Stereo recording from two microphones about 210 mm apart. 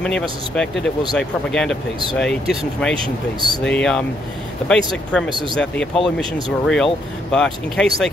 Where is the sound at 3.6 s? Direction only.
5° left (ahead or behind).